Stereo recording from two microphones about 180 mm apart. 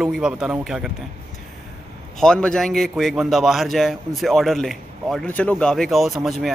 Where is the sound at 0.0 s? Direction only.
5° right (ahead or behind).